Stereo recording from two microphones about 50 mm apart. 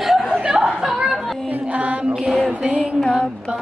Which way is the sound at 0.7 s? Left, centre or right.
Centre.